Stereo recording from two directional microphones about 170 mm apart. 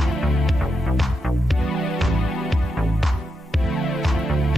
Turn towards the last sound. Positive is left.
turn(degrees=0)  # may be behind; listen again after turning